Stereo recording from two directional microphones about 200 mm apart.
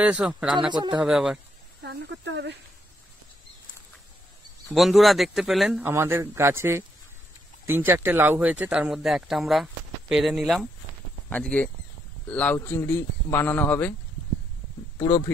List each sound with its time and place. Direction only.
0.0 s speech: 5° right (ahead or behind)
0.7 s a man's voice: 20° right (ahead or behind)
1.0 s speech: 5° right (ahead or behind)
1.8 s speech: 60° right (ahead or behind)
4.7 s a man's voice: centre (ahead or behind)
15.0 s a man's voice: 15° left (ahead or behind)